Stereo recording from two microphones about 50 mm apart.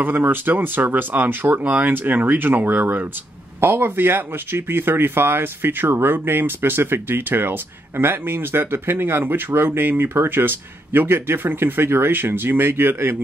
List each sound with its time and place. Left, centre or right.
0.0 s speech: right